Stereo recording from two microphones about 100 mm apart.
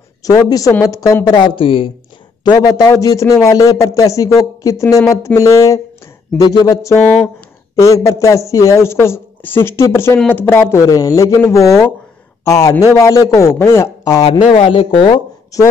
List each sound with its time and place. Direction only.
0.2 s a man's voice: 40° left (ahead or behind)
1.3 s speech: 50° left (ahead or behind)
2.4 s a man's voice: 45° left (ahead or behind)
6.4 s a man's voice: 40° left (ahead or behind); by 13.9 s 25° left (ahead or behind)
14.5 s speech: 65° left (ahead or behind)
15.5 s a man's voice: 35° left (ahead or behind)